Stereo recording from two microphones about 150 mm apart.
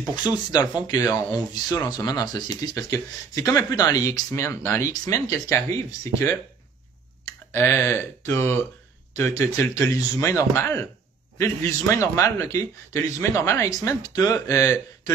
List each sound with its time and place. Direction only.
0.1 s a man's voice: 25° left (ahead or behind)